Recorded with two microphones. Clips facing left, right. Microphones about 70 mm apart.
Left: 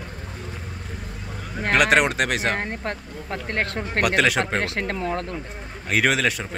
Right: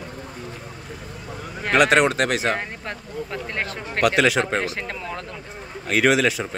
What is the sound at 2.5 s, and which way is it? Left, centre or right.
Speech, left.